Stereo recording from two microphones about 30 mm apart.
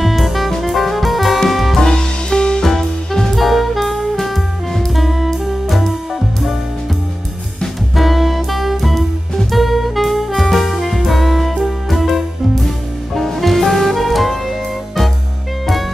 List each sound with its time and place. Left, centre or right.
0.0 s music: centre
1.8 s music: left
2.6 s music: centre
3.3 s jazz: centre
7.9 s music: centre